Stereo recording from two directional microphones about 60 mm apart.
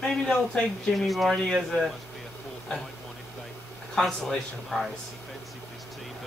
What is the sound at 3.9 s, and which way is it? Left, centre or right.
Speech, centre.